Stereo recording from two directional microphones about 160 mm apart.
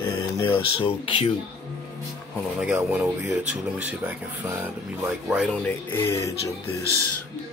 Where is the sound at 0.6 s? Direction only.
35° left (ahead or behind).